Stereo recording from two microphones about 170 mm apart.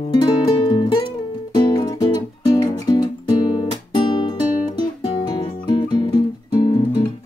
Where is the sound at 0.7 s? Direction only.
30° left (ahead or behind).